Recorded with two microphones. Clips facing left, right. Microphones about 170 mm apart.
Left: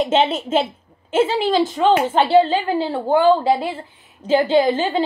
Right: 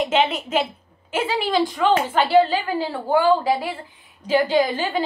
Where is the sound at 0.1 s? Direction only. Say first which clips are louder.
Left 3 dB; 25° left (ahead or behind).